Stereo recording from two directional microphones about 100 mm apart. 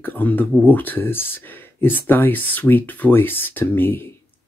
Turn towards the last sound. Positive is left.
turn(degrees=20)  # may be behind; listen again after turning